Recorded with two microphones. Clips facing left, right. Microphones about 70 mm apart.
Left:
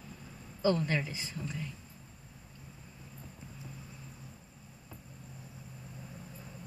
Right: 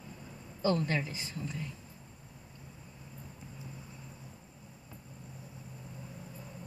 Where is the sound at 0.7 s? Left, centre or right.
Centre.